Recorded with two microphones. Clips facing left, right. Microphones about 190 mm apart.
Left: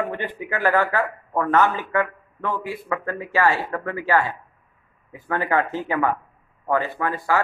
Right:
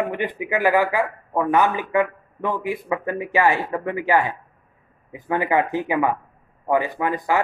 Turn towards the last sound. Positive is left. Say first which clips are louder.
# right 2 dB
turn(degrees=-15)  # may be behind; listen again after turning